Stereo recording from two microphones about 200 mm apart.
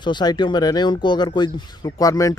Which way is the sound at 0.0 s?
20° left (ahead or behind).